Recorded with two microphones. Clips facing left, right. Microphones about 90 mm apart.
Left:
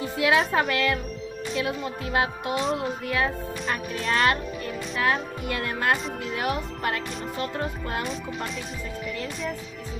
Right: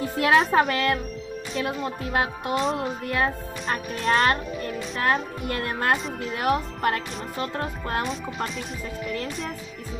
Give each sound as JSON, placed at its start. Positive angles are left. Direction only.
{"t": 0.2, "sound": "a child's voice", "side_deg": -35}
{"t": 2.5, "sound": "music", "side_deg": 0}
{"t": 3.2, "sound": "a child's voice", "side_deg": -40}